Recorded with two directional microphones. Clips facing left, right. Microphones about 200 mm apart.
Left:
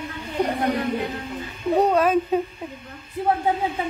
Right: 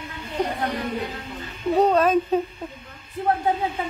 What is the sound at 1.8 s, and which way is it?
Speech, 10° left (ahead or behind).